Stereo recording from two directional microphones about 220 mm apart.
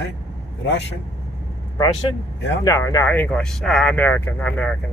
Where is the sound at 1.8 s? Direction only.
20° left (ahead or behind); by 4.7 s 5° left (ahead or behind).